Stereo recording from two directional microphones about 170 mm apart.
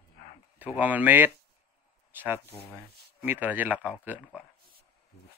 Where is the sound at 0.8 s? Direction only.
10° right (ahead or behind).